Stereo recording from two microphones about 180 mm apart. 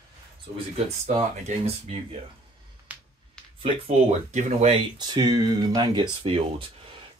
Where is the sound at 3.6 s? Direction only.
40° right (ahead or behind).